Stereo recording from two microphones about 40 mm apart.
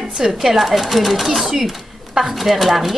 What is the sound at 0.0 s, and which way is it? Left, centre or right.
Speech, centre.